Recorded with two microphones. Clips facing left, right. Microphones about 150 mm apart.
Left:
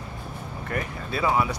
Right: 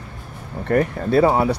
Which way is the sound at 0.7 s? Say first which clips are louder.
Right 14 dB; 55° right (ahead or behind).